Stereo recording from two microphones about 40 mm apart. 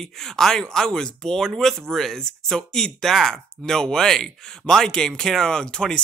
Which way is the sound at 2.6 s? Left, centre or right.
Centre.